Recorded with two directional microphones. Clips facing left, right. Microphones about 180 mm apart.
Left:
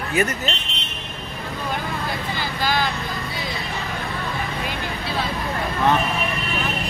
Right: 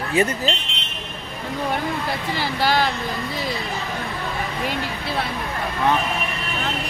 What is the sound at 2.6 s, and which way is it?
Speech, 60° right (ahead or behind).